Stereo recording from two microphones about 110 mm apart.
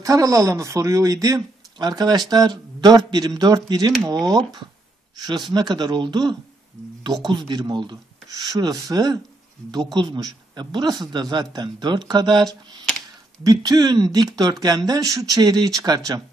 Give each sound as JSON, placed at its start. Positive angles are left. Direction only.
{"t": 0.0, "sound": "speech", "side_deg": -30}
{"t": 5.1, "sound": "speech", "side_deg": -35}